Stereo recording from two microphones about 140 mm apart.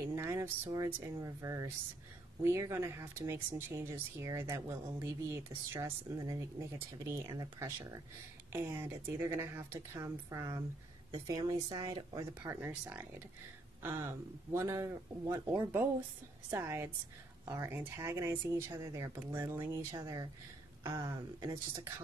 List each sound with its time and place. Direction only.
0.1 s speech: 20° right (ahead or behind)
12.6 s speech: 15° right (ahead or behind)
20.0 s speech: 30° right (ahead or behind)